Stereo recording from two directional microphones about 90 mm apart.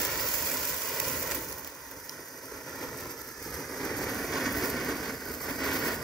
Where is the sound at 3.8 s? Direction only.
5° left (ahead or behind).